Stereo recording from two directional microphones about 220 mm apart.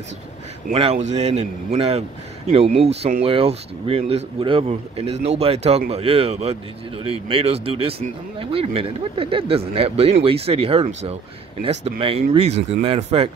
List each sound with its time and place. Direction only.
0.7 s a man's voice: 30° right (ahead or behind)